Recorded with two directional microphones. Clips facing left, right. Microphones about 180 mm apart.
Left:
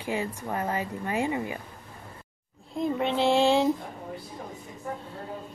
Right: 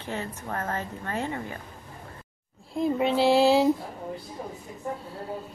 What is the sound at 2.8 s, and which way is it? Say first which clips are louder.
Speech: right 2 dB; 5° right (ahead or behind).